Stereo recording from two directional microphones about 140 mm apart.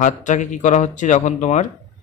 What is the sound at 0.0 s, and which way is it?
Speech, 60° left (ahead or behind).